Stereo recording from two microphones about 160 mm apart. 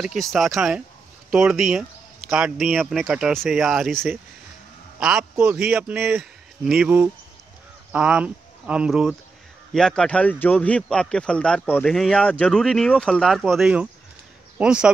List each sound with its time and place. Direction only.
0.0 s speech: centre (ahead or behind)
4.9 s a sound: 5° right (ahead or behind)
5.3 s speech: 15° right (ahead or behind)